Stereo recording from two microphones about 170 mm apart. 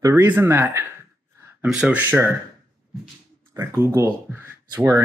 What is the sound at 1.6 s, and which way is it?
Speech, 5° right (ahead or behind).